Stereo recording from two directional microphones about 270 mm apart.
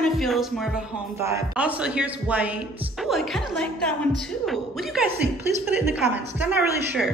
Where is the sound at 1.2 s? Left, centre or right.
Centre.